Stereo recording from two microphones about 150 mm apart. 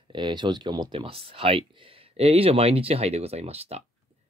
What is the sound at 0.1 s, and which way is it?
Speech, 30° right (ahead or behind).